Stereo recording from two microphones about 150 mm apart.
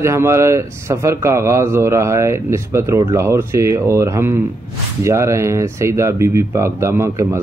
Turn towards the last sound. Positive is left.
turn(degrees=-20)  # may be behind; listen again after turning